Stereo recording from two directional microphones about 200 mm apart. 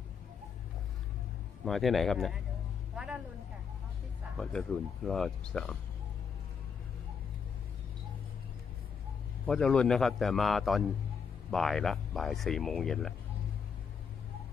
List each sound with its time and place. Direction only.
1.6 s speech: centre (ahead or behind)
4.4 s speech: 5° left (ahead or behind)
9.5 s speech: 5° left (ahead or behind)